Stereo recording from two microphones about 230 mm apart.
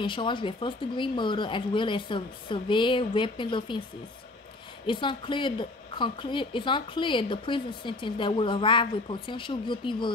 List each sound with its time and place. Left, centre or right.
0.0 s a woman's voice: left
4.8 s a woman's voice: left